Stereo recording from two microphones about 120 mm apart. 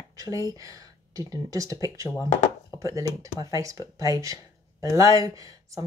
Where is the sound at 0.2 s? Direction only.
30° right (ahead or behind).